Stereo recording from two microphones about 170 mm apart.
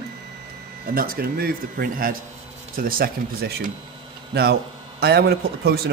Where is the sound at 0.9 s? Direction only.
60° right (ahead or behind).